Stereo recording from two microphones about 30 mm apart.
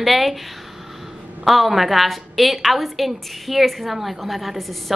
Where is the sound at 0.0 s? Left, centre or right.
Centre.